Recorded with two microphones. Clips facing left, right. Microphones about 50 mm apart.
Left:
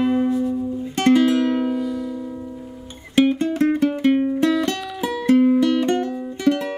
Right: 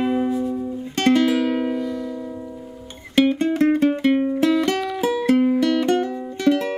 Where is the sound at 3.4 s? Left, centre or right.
Centre.